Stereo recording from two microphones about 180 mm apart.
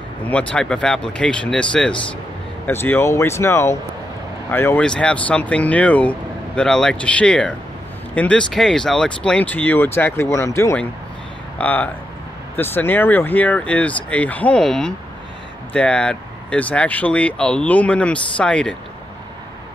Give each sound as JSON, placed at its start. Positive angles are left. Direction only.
{"t": 0.3, "sound": "speech", "side_deg": 5}